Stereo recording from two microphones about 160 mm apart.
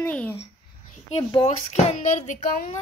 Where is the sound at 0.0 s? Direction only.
10° left (ahead or behind).